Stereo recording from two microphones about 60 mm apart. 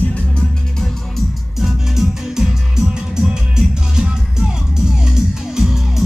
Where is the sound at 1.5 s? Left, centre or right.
Centre.